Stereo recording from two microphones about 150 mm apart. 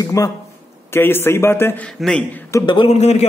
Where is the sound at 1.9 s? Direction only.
5° left (ahead or behind).